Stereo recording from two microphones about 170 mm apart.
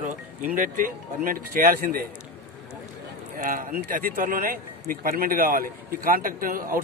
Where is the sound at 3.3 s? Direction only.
55° right (ahead or behind).